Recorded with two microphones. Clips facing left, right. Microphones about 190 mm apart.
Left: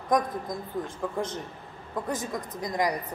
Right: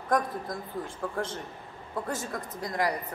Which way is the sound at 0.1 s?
15° left (ahead or behind).